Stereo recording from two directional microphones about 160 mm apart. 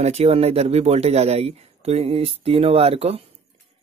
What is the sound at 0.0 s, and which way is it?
Speech, 40° right (ahead or behind).